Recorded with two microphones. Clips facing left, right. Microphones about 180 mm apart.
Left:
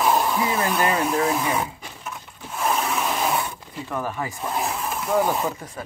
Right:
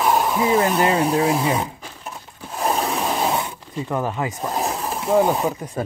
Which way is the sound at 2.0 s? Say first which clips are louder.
Right 1 dB; 35° right (ahead or behind).